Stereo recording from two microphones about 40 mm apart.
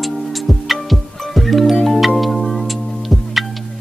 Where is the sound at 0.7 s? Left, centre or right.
Centre.